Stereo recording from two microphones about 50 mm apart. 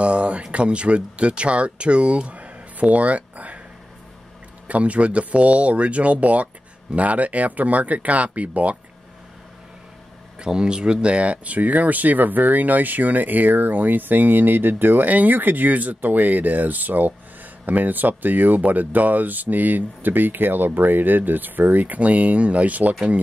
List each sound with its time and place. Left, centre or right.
0.0 s speech: right
4.6 s speech: right
10.4 s speech: centre